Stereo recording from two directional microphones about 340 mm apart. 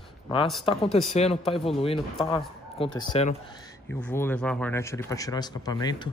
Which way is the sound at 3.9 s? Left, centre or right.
Centre.